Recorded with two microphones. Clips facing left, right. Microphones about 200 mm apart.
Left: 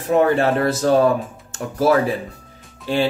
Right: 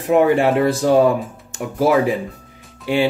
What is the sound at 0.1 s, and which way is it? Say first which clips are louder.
Speech: right 2 dB; 15° right (ahead or behind).